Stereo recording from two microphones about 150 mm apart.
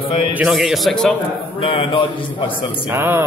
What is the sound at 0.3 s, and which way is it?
Speech, 5° right (ahead or behind).